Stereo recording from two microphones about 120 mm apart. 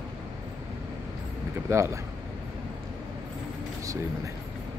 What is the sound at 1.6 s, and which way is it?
Speech, 20° right (ahead or behind).